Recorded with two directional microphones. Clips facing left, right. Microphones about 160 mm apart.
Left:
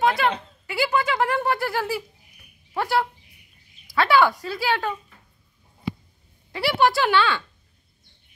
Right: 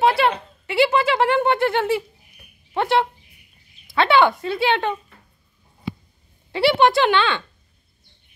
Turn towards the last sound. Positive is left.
turn(degrees=-20)  # may be behind; listen again after turning